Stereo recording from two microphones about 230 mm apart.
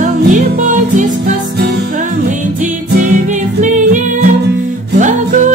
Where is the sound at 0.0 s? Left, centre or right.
Right.